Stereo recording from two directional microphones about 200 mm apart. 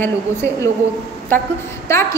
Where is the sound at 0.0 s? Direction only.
15° left (ahead or behind).